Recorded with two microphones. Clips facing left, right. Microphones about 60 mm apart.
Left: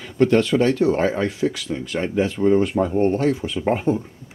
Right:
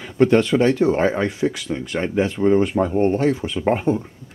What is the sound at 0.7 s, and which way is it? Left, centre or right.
Speech, centre.